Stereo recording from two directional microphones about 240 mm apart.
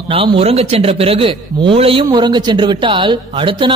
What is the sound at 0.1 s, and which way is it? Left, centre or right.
A man's voice, right.